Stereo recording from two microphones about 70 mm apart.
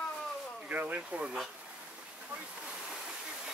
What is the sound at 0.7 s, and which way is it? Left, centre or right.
Speech, right.